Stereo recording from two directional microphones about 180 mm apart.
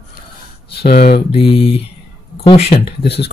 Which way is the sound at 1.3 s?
30° left (ahead or behind).